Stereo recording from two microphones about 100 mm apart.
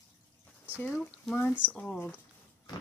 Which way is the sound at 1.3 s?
20° left (ahead or behind).